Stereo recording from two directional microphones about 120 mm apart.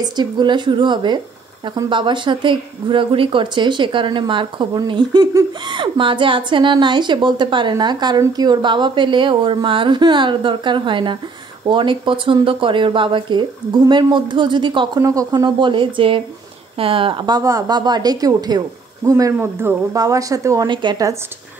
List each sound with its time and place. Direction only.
0.0 s speech: 35° right (ahead or behind)
15.0 s speech: 30° right (ahead or behind)
20.6 s speech: 40° right (ahead or behind)